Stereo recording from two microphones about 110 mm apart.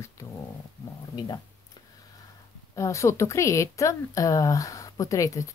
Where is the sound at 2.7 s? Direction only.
30° left (ahead or behind).